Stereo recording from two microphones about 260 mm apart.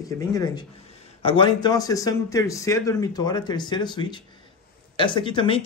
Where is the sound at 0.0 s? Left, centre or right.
Centre.